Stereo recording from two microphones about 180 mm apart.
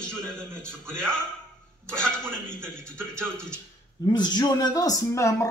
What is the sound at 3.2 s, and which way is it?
Speech, 5° left (ahead or behind).